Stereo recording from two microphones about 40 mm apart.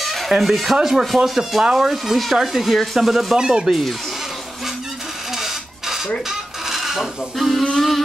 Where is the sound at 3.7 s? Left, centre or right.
Centre.